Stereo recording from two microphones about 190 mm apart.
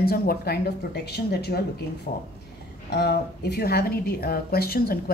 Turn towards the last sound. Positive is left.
turn(degrees=50)  # may be behind; listen again after turning